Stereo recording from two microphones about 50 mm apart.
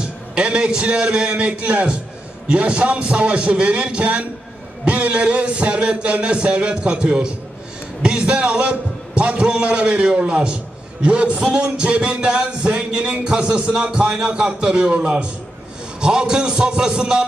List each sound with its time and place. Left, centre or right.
0.0 s a man's voice: centre